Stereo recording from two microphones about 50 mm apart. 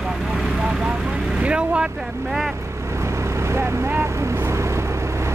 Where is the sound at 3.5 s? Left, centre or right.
Right.